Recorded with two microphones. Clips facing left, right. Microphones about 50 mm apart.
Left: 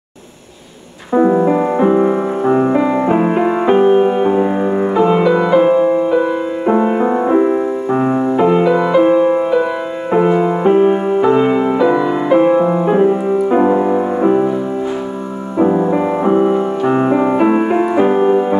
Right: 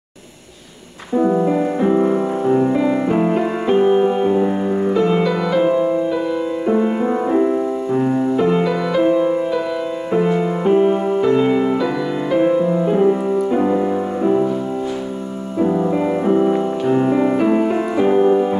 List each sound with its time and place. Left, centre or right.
1.1 s music: left
15.6 s piano: left